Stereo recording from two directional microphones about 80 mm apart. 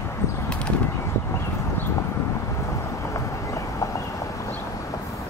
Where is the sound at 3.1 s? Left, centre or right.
Left.